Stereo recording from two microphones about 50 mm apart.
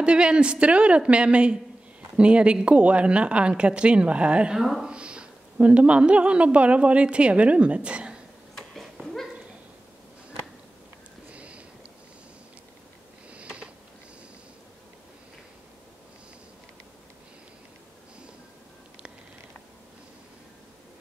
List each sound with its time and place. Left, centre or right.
0.0 s a woman's voice: right
4.6 s speech: centre
4.8 s a woman's voice: right
9.0 s dog: centre
11.2 s a sound: right
13.3 s a sound: right